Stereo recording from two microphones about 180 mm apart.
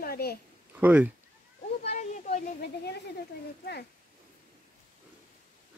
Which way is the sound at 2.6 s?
65° left (ahead or behind).